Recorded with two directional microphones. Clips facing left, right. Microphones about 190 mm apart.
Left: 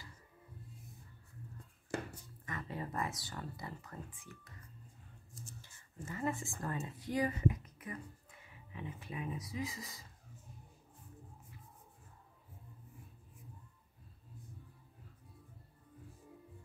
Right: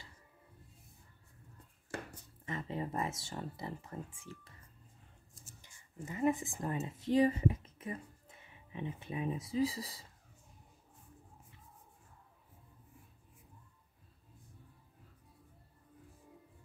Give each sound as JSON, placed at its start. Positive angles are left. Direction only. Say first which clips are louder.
{"t": 2.4, "sound": "speech", "louder": "right 4 dB", "side_deg": -25}
{"t": 5.3, "sound": "a sound", "louder": "left 9 dB", "side_deg": -5}
{"t": 5.6, "sound": "speech", "louder": "right 7 dB", "side_deg": -15}